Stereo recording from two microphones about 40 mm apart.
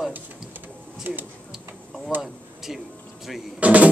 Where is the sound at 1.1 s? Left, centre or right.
Right.